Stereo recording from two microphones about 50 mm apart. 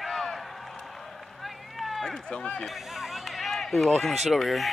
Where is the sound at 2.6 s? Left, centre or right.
Centre.